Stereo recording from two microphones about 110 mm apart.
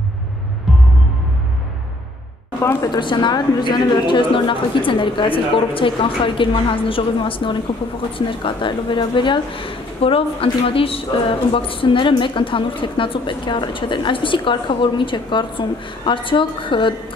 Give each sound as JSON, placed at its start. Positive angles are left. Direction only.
{"t": 2.6, "sound": "a woman's voice", "side_deg": 20}
{"t": 2.9, "sound": "a woman's voice", "side_deg": 45}